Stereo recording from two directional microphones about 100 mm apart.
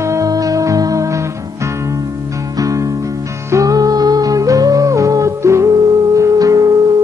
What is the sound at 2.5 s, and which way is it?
Music, 35° right (ahead or behind).